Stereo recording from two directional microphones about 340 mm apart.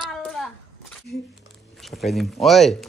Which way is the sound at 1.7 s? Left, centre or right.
Centre.